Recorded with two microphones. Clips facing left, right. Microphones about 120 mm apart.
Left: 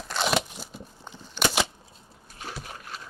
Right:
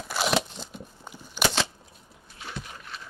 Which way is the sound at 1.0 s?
10° right (ahead or behind).